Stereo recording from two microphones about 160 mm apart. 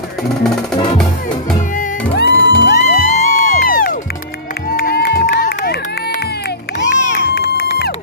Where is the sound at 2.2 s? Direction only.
90° left.